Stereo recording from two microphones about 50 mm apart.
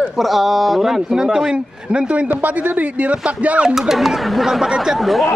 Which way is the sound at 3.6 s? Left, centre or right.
Centre.